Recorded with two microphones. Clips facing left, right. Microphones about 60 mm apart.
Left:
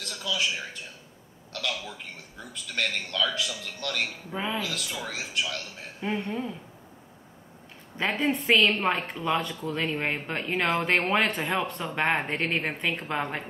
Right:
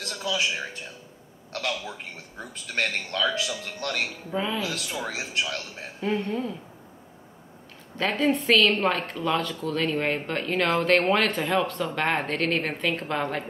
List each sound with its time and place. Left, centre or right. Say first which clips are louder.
0.0 s a sound: right 2 dB; right
1.5 s a man's voice: right 3 dB; right
4.3 s speech: right 6 dB; centre
4.6 s a man's voice: right 3 dB; right
5.9 s speech: right 3 dB; centre
8.0 s a woman's voice: right 3 dB; centre